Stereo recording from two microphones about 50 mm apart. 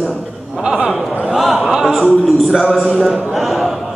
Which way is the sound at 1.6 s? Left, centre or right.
Centre.